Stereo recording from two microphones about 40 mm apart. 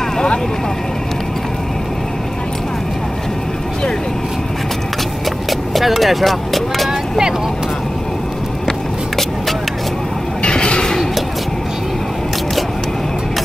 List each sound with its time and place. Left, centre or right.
5.5 s vehicle: centre
6.9 s vehicle: centre
8.6 s vehicle: centre
10.4 s a sound: left